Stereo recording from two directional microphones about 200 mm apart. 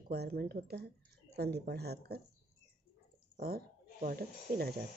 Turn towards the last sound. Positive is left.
turn(degrees=-50)  # may be behind; listen again after turning